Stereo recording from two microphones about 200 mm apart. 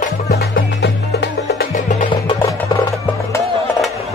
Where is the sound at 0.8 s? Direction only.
60° left (ahead or behind).